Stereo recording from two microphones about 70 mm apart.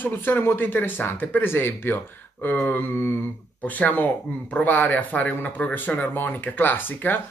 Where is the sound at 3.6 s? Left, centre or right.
Left.